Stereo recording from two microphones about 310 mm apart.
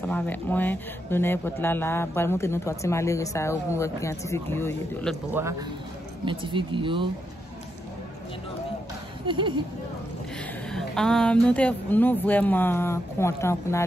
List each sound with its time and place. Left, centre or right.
0.0 s speech: centre
5.3 s speech: centre
10.7 s speech: centre